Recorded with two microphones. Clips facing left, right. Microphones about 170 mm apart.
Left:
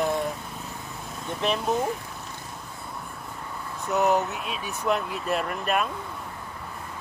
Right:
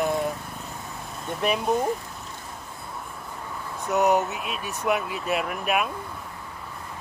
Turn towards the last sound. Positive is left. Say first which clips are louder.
# right 1 dB
turn(degrees=-5)  # may be behind; listen again after turning